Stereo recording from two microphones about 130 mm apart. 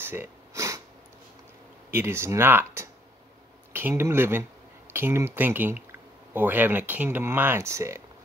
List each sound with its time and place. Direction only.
0.0 s sniff: 15° right (ahead or behind)
1.9 s speech: 15° right (ahead or behind)